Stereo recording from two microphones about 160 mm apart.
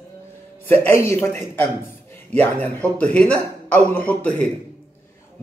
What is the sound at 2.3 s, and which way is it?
A man's voice, 10° left (ahead or behind).